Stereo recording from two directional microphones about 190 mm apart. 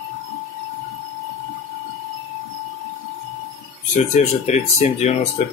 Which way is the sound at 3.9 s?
40° left (ahead or behind).